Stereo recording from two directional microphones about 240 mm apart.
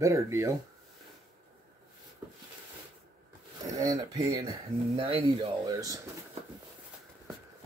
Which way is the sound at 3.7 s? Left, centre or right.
Centre.